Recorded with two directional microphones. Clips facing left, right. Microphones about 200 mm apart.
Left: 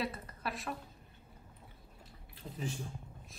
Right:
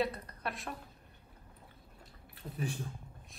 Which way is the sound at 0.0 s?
Centre (ahead or behind).